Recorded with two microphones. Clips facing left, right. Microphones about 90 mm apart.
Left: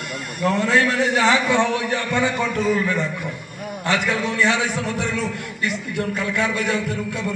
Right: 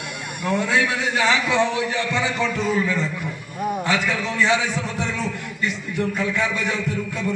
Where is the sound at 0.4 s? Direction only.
50° left (ahead or behind).